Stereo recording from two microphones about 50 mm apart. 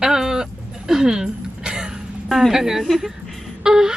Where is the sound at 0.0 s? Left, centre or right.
Centre.